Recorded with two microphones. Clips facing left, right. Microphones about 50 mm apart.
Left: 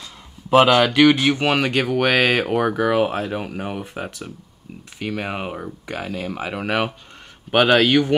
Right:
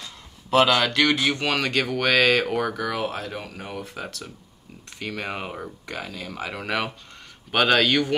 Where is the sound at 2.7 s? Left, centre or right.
Left.